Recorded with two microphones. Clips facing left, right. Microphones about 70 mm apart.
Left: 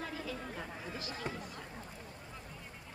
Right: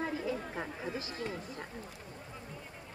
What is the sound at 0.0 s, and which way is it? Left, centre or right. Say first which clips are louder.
Chatter: right 6 dB; right.